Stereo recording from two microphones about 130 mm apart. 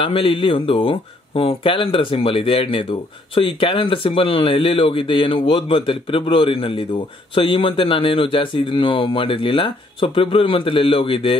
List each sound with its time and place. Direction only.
0.1 s speech: 45° left (ahead or behind)